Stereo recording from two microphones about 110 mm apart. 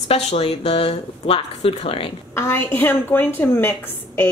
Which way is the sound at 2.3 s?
20° left (ahead or behind).